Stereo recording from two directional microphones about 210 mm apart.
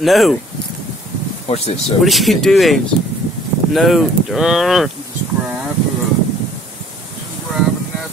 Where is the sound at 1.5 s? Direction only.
30° left (ahead or behind).